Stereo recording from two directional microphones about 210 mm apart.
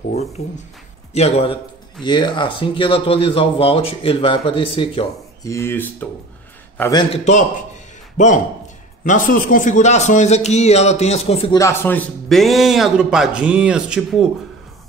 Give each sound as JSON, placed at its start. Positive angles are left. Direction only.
{"t": 0.4, "sound": "a man's voice", "side_deg": 30}
{"t": 5.5, "sound": "speech", "side_deg": 10}
{"t": 8.2, "sound": "a man's voice", "side_deg": 35}
{"t": 11.5, "sound": "a man's voice", "side_deg": 10}